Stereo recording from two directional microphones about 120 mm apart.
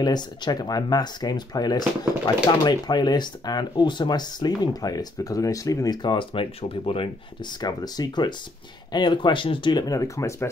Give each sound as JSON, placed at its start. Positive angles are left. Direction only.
{"t": 0.0, "sound": "speech", "side_deg": 35}
{"t": 6.0, "sound": "speech", "side_deg": 45}
{"t": 7.6, "sound": "speech", "side_deg": 35}